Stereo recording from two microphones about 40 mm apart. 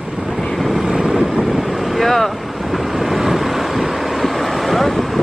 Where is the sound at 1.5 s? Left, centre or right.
Centre.